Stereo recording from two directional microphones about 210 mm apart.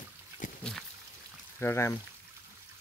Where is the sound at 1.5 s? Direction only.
10° left (ahead or behind).